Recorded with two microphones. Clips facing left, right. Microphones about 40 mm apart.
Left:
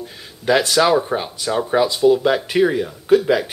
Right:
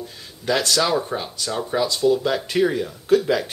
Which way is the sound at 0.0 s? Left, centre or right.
Centre.